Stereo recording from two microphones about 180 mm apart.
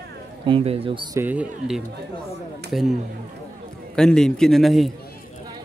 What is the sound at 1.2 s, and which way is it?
Speech, 10° right (ahead or behind).